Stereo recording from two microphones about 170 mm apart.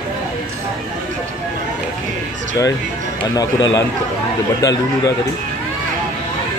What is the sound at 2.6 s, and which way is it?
Speech, 20° left (ahead or behind).